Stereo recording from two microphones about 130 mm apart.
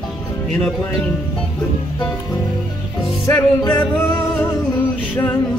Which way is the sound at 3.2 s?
20° left (ahead or behind).